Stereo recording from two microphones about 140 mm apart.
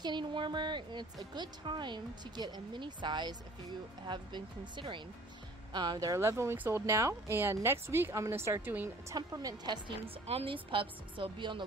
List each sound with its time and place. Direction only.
0.0 s a woman's voice: 35° right (ahead or behind); by 8.9 s 15° right (ahead or behind)
9.1 s a woman's voice: 25° right (ahead or behind)